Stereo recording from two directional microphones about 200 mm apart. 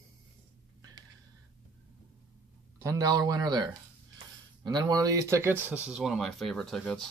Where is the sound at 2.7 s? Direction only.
15° right (ahead or behind); by 7.0 s centre (ahead or behind).